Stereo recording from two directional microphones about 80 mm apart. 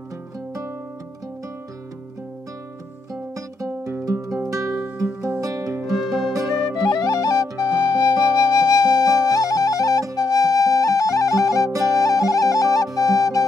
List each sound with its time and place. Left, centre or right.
3.1 s music: right
5.9 s music: centre
6.9 s music: left
7.6 s flute: left
10.1 s music: left
13.0 s flute: left